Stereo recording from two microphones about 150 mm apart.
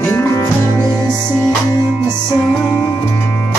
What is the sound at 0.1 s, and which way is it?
Music, 20° left (ahead or behind).